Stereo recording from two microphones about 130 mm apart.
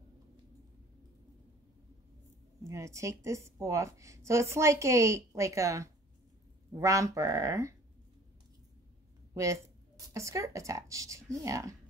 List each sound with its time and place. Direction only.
2.6 s a woman's voice: 25° right (ahead or behind)
9.3 s a woman's voice: 25° right (ahead or behind)